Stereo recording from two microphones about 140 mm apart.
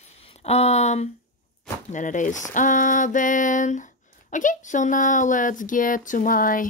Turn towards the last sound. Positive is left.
turn(degrees=75)  # may be behind; listen again after turning